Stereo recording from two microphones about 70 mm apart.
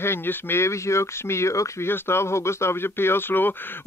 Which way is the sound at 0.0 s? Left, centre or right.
Left.